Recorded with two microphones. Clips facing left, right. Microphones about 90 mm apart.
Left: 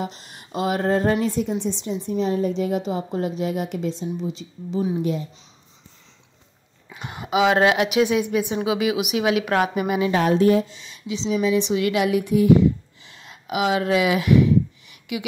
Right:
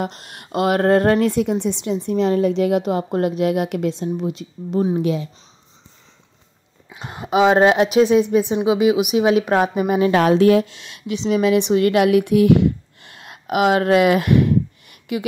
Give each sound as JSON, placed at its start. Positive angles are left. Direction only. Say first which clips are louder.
{"t": 0.0, "sound": "speech", "louder": "right 4 dB", "side_deg": -65}
{"t": 4.9, "sound": "a woman's voice", "louder": "right 4 dB", "side_deg": -90}
{"t": 6.9, "sound": "a woman's voice", "louder": "right 3 dB", "side_deg": -35}
{"t": 10.1, "sound": "speech", "louder": "right 3 dB", "side_deg": -85}